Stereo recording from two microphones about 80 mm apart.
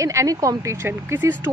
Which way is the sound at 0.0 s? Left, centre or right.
Right.